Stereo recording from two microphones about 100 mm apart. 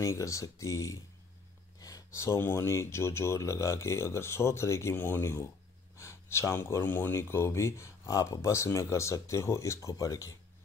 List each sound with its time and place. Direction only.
0.0 s speech: 30° left (ahead or behind)